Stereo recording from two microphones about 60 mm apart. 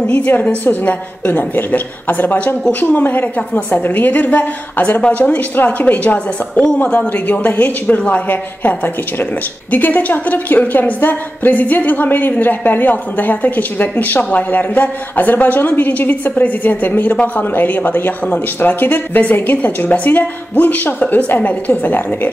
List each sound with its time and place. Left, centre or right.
0.0 s a woman's voice: left
6.8 s a woman's voice: left